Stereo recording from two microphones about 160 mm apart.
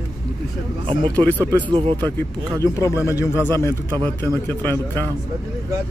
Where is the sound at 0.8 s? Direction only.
25° right (ahead or behind).